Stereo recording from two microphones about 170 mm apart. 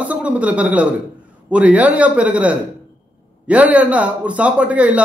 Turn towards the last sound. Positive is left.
turn(degrees=-10)  # may be behind; listen again after turning